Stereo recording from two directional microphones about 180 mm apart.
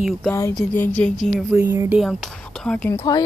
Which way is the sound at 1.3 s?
5° right (ahead or behind).